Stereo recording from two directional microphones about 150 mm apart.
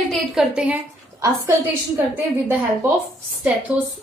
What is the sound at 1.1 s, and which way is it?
A woman's voice, 20° right (ahead or behind).